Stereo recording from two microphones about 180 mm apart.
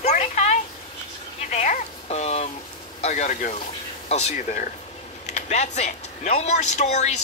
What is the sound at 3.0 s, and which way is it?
Speech, 40° left (ahead or behind).